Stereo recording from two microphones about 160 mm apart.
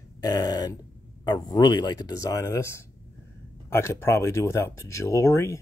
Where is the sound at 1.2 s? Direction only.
25° left (ahead or behind).